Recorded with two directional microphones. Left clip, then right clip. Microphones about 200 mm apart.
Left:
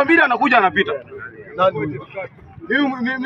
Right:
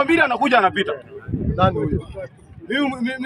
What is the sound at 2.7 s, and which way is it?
Speech, 10° right (ahead or behind).